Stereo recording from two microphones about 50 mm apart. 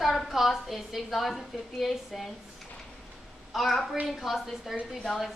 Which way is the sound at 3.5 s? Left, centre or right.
Centre.